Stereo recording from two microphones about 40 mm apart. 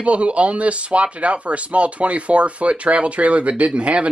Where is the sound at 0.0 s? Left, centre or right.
Right.